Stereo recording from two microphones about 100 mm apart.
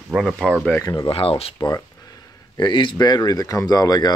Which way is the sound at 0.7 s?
30° left (ahead or behind).